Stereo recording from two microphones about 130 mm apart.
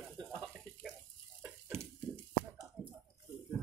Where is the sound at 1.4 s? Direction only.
15° right (ahead or behind).